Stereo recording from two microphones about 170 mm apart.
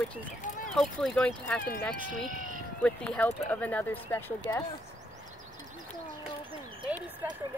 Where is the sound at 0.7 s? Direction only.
5° left (ahead or behind).